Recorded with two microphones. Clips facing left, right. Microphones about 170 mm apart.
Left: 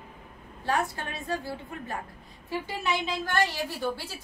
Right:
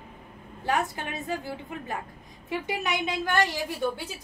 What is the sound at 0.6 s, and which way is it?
A woman's voice, 15° right (ahead or behind).